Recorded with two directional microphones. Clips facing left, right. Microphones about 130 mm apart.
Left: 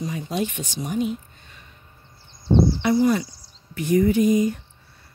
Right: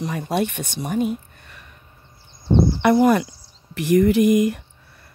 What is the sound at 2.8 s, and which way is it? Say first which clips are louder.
Speech: right 4 dB; 60° right (ahead or behind).